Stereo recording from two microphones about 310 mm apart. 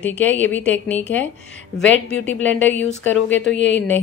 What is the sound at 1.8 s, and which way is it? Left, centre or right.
Speech, left.